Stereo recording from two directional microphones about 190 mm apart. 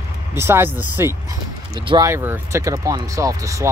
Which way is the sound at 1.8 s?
20° right (ahead or behind).